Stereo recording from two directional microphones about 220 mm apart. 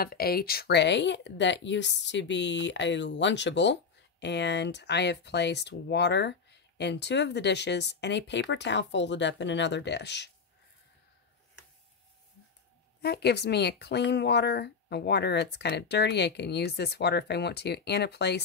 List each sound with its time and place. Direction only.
0.0 s speech: 45° left (ahead or behind)
13.0 s speech: 50° left (ahead or behind)